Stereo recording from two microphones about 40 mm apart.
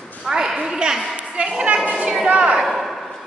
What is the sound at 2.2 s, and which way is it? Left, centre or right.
Speech, right.